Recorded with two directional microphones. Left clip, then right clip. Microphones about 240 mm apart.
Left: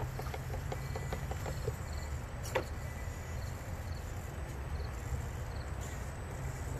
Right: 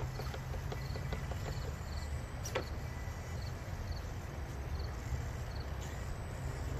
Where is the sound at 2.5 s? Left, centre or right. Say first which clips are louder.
Left 4 dB; centre.